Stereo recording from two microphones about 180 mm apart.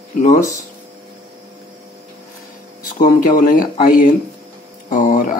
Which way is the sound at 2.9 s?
45° left (ahead or behind).